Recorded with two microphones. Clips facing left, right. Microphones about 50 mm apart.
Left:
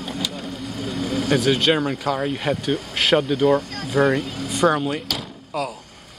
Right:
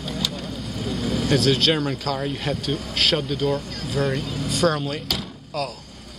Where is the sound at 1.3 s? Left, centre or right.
Centre.